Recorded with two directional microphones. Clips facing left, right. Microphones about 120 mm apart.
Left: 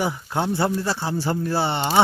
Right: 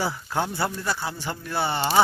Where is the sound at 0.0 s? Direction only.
20° left (ahead or behind).